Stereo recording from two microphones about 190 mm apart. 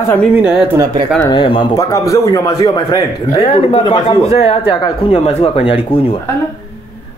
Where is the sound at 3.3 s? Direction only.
30° left (ahead or behind).